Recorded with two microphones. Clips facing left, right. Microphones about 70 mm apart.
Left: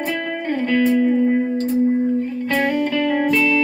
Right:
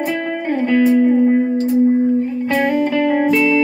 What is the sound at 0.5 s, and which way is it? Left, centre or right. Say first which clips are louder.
Music: right 4 dB; centre.